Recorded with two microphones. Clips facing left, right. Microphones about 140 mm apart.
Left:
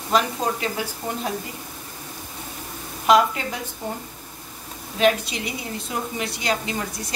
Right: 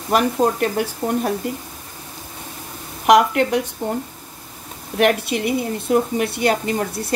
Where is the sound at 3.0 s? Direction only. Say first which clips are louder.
Right 4 dB; 70° right (ahead or behind).